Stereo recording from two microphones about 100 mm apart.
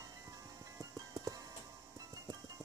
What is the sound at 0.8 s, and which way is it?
Clip-clop, 35° right (ahead or behind).